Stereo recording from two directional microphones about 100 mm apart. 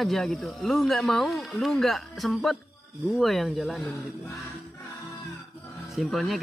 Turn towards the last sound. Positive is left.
turn(degrees=0)  # may be behind; listen again after turning